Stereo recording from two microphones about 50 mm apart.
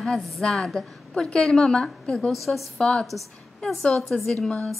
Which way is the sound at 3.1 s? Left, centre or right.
Centre.